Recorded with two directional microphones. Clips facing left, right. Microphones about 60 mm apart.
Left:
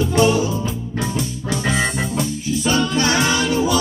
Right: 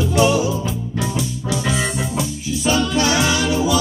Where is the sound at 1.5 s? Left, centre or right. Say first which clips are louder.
Left 1 dB; left.